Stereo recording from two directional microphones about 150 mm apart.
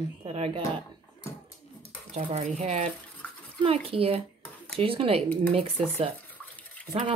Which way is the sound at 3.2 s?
10° left (ahead or behind).